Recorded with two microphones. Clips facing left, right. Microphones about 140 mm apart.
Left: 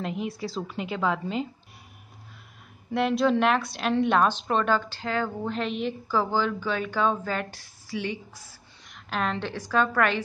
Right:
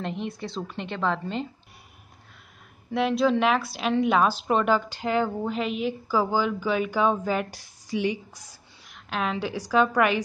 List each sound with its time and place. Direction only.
0.0 s a woman's voice: 5° left (ahead or behind)
2.9 s a woman's voice: centre (ahead or behind)
8.8 s a woman's voice: centre (ahead or behind)